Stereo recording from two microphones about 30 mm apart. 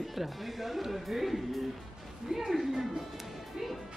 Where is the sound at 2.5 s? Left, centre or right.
Centre.